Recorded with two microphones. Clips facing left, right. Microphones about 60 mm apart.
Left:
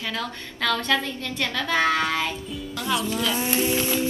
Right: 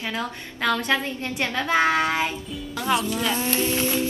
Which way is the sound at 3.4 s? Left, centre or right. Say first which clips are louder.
Even; centre.